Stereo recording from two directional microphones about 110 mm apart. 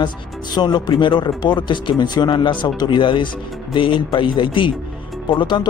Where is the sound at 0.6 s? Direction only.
40° left (ahead or behind).